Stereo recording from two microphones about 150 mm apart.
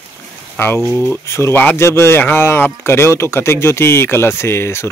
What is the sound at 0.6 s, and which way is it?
Speech, 15° left (ahead or behind).